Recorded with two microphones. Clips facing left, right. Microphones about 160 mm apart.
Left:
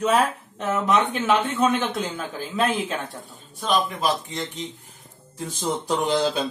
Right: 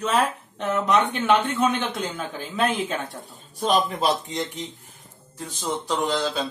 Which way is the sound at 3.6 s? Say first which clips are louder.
Right 2 dB; 35° right (ahead or behind).